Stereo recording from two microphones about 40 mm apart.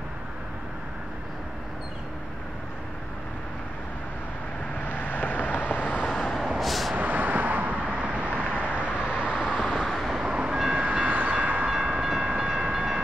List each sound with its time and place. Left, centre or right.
4.8 s vehicle: left
6.0 s vehicle: centre
7.0 s vehicle: right
7.8 s vehicle: right
8.5 s vehicle: left
8.7 s vehicle: right
9.6 s vehicle: centre
9.8 s vehicle: centre
10.1 s vehicle: right
10.7 s train: right
11.7 s train: centre